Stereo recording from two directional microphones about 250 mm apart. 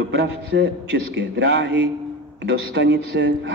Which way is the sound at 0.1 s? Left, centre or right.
Right.